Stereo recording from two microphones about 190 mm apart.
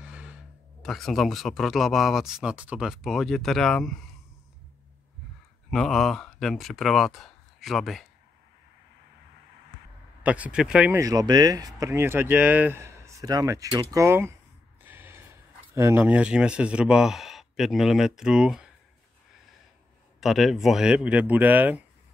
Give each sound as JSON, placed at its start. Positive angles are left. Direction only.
{"t": 0.0, "sound": "sigh", "side_deg": -5}
{"t": 0.8, "sound": "speech", "side_deg": 0}
{"t": 5.7, "sound": "speech", "side_deg": 0}
{"t": 10.2, "sound": "speech", "side_deg": -5}
{"t": 20.2, "sound": "speech", "side_deg": 0}